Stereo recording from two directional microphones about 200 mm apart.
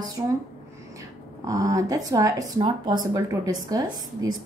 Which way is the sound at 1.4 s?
15° right (ahead or behind).